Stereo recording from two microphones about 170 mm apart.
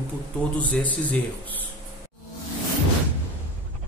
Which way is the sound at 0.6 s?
10° left (ahead or behind).